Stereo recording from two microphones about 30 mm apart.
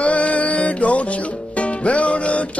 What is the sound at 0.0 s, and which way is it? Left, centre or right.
Music, left.